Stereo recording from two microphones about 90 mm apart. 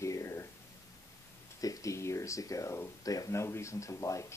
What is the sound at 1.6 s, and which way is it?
Speech, 40° left (ahead or behind).